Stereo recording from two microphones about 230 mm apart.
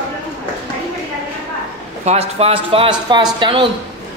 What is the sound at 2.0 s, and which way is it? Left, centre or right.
Speech, right.